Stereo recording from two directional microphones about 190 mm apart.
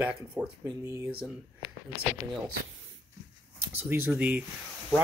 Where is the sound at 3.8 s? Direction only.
10° right (ahead or behind).